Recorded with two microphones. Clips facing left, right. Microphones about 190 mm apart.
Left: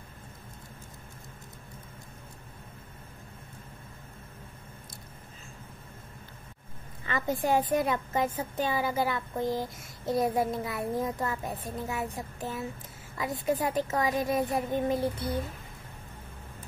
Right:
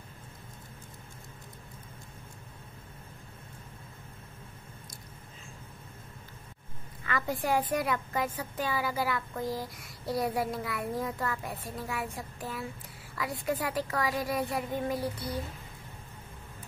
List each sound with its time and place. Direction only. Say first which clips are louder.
7.1 s a woman's voice: left 3 dB; 20° left (ahead or behind)